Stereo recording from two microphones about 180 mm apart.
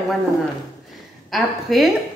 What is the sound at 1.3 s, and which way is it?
Speech, centre (ahead or behind).